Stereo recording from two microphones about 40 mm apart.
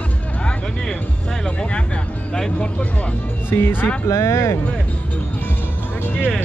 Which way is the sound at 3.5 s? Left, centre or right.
Left.